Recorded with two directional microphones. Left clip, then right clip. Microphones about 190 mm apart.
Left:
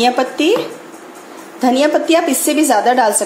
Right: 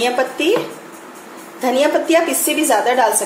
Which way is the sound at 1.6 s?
40° left (ahead or behind).